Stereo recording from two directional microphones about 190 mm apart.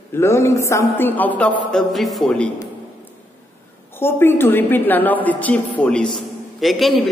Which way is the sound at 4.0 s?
10° left (ahead or behind).